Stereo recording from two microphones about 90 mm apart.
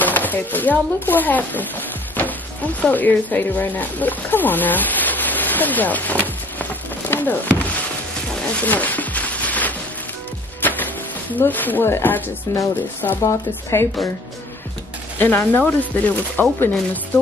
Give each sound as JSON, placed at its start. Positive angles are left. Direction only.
{"t": 0.0, "sound": "speech", "side_deg": 20}
{"t": 8.6, "sound": "a sound", "side_deg": 20}
{"t": 10.6, "sound": "music", "side_deg": 20}
{"t": 11.3, "sound": "speech", "side_deg": 20}
{"t": 12.5, "sound": "a woman's voice", "side_deg": 35}
{"t": 15.1, "sound": "speech", "side_deg": 20}